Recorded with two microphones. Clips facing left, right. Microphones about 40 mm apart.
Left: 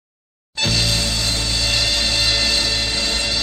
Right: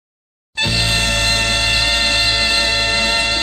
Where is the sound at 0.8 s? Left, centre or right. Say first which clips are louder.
Right 5 dB; right.